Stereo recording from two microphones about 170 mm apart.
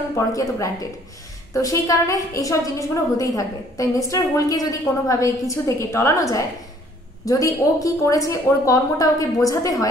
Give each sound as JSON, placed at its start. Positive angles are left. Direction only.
{"t": 0.1, "sound": "a woman's voice", "side_deg": 20}